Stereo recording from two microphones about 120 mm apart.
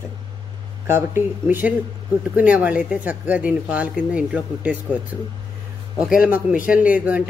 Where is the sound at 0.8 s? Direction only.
20° right (ahead or behind).